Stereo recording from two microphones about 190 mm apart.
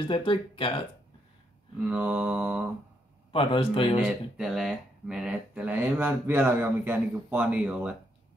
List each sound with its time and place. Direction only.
0.1 s a man's voice: 25° left (ahead or behind)
1.8 s speech: 10° right (ahead or behind)
3.3 s a man's voice: 25° left (ahead or behind)
4.4 s speech: centre (ahead or behind)